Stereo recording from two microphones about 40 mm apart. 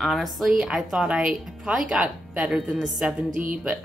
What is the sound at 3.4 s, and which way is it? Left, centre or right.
Speech, right.